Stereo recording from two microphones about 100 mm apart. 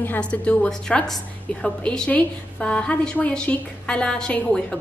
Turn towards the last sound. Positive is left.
turn(degrees=10)  # may be behind; listen again after turning